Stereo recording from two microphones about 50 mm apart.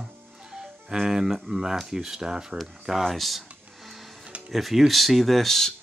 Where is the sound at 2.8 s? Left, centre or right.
Centre.